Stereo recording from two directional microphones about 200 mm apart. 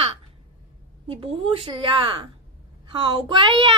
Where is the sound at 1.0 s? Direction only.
30° right (ahead or behind).